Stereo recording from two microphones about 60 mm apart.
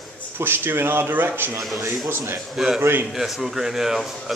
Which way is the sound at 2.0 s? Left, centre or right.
Right.